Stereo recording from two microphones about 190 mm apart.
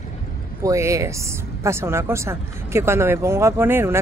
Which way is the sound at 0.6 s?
15° right (ahead or behind).